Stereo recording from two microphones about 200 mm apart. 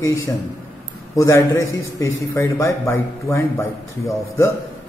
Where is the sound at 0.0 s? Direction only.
15° left (ahead or behind).